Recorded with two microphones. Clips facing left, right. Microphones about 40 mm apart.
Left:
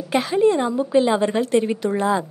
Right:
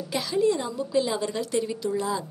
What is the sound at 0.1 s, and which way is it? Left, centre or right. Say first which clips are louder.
A woman's voice: left 7 dB; left.